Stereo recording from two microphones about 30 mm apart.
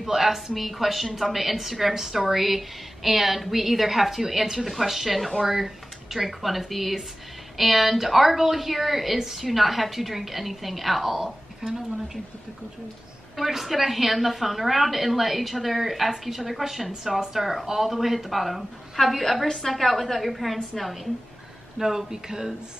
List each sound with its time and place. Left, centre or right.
0.0 s a woman's voice: centre
13.4 s a woman's voice: centre
19.4 s a woman's voice: centre
19.7 s a woman's voice: centre
21.7 s speech: centre